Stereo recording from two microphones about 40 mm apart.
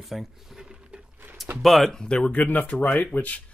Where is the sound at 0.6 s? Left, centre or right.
Right.